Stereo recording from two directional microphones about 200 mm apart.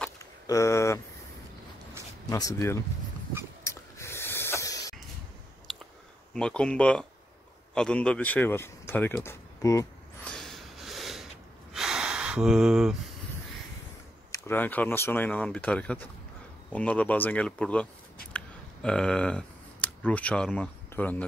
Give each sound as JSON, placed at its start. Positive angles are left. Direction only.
{"t": 0.5, "sound": "speech", "side_deg": 15}
{"t": 2.2, "sound": "speech", "side_deg": 20}
{"t": 3.6, "sound": "a sound", "side_deg": 15}
{"t": 5.7, "sound": "chewing", "side_deg": 0}
{"t": 6.3, "sound": "speech", "side_deg": 5}
{"t": 10.3, "sound": "a sound", "side_deg": 0}
{"t": 11.7, "sound": "gasp", "side_deg": -5}
{"t": 14.3, "sound": "speech", "side_deg": 10}
{"t": 18.3, "sound": "a sound", "side_deg": 5}